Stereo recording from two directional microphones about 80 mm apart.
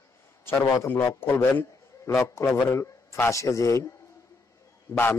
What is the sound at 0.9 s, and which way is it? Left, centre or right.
A man's voice, left.